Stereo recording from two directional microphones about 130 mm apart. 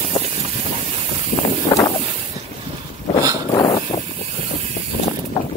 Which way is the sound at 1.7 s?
35° left (ahead or behind).